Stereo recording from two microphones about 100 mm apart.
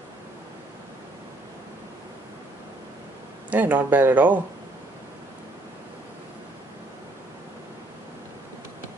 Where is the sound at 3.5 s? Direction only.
20° right (ahead or behind).